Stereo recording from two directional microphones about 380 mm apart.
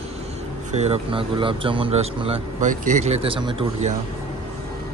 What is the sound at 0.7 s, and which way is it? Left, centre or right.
A man's voice, centre.